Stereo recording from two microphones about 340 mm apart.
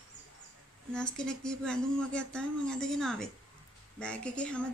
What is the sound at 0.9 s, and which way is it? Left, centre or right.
Speech, centre.